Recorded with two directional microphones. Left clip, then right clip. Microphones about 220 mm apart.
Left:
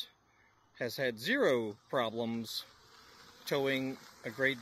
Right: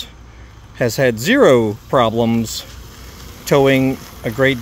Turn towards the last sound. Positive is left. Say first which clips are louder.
# right 17 dB
turn(degrees=0)  # may be behind; listen again after turning